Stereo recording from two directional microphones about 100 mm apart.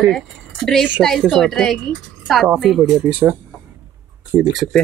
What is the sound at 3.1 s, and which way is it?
Speech, 20° right (ahead or behind).